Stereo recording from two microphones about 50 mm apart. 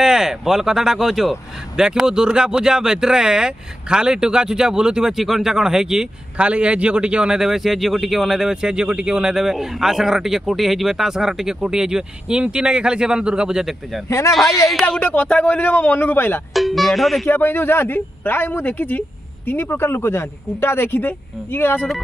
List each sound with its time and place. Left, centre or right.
0.0 s a man's voice: centre
6.3 s a man's voice: right; by 8.5 s centre
8.5 s a man's voice: centre
14.0 s speech: left
14.3 s speech: centre
15.0 s speech: left
15.2 s a man's voice: left
16.5 s speech: centre
17.3 s speech: left